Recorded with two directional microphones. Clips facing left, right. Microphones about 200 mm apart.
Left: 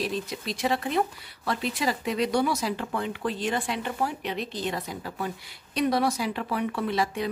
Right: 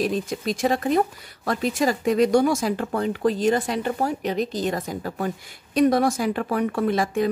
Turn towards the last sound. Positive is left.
turn(degrees=-50)  # may be behind; listen again after turning